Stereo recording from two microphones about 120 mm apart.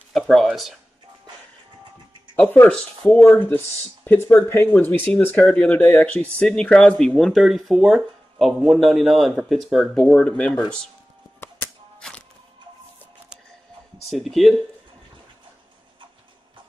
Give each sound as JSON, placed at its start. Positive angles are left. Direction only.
{"t": 0.1, "sound": "speech", "side_deg": 0}
{"t": 2.5, "sound": "speech", "side_deg": 15}
{"t": 12.0, "sound": "music", "side_deg": 5}
{"t": 14.1, "sound": "speech", "side_deg": 0}